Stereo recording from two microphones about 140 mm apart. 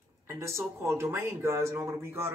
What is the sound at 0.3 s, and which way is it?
Speech, 20° right (ahead or behind).